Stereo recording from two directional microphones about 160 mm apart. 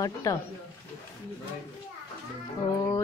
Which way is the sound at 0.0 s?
20° left (ahead or behind).